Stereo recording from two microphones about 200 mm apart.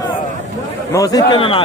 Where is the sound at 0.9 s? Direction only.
15° left (ahead or behind).